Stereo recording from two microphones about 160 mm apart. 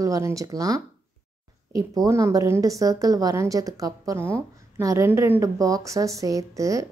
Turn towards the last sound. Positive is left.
turn(degrees=-20)  # may be behind; listen again after turning